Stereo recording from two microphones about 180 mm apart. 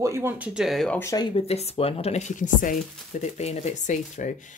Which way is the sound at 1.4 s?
35° left (ahead or behind).